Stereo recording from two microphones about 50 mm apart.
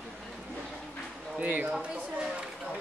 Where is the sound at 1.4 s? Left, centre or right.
Right.